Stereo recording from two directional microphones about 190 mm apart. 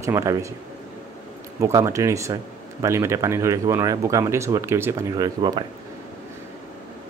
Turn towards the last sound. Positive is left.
turn(degrees=-20)  # may be behind; listen again after turning